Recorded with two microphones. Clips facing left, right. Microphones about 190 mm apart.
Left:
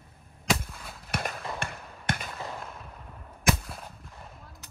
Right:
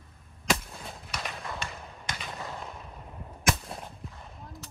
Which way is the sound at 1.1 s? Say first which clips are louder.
Left 5 dB; 55° left (ahead or behind).